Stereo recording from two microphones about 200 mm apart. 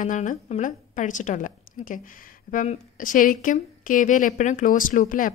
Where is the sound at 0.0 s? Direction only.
40° left (ahead or behind).